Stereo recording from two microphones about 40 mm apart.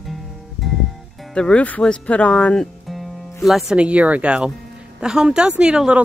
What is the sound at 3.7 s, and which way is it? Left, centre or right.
Speech, right.